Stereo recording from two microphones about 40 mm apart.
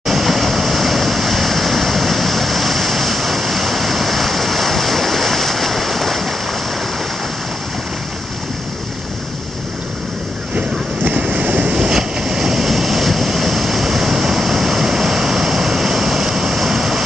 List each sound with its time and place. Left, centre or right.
0.0 s vehicle: centre
11.1 s waves: right
11.7 s vehicle: centre